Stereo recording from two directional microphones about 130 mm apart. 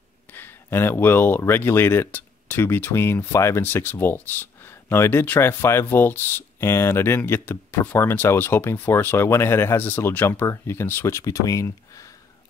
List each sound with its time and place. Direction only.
0.3 s speech: 15° left (ahead or behind)